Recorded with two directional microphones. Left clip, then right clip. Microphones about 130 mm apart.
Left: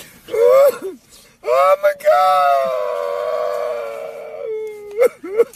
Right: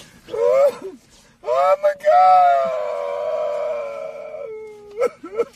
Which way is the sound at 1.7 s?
20° left (ahead or behind).